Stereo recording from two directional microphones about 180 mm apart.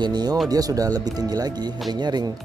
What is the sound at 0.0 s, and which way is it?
Speech, 20° right (ahead or behind).